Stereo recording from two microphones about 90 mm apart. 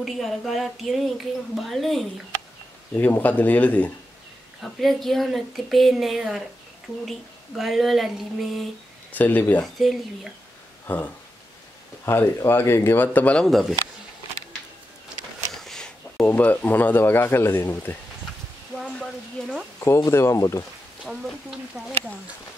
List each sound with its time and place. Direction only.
0.0 s a woman's voice: centre (ahead or behind)
2.9 s speech: 20° left (ahead or behind)
4.6 s a woman's voice: centre (ahead or behind)
9.1 s speech: 20° left (ahead or behind)
10.9 s speech: 20° left (ahead or behind)
12.0 s speech: 30° left (ahead or behind)
13.5 s a woman's voice: centre (ahead or behind)
15.6 s a sound: 5° left (ahead or behind)
16.3 s speech: 20° left (ahead or behind)
18.8 s sizzle: 10° left (ahead or behind)
20.1 s speech: 30° left (ahead or behind)
21.1 s a woman's voice: centre (ahead or behind)